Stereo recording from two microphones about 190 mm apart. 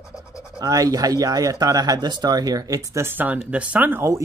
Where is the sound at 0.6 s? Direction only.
20° right (ahead or behind).